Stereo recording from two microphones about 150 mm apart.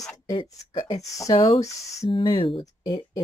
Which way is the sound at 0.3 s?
35° left (ahead or behind).